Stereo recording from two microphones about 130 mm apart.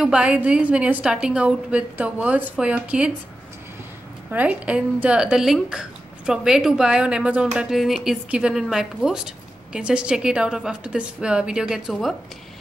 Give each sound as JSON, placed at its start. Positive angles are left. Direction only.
{"t": 0.0, "sound": "a woman's voice", "side_deg": -5}
{"t": 4.3, "sound": "a woman's voice", "side_deg": -10}